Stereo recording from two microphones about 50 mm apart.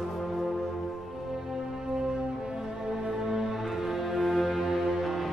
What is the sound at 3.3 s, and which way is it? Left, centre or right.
Music, centre.